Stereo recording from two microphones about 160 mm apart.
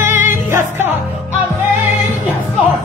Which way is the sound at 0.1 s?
50° left (ahead or behind).